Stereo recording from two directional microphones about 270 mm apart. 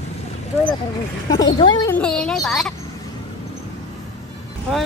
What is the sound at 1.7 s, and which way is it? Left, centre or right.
Speech, centre.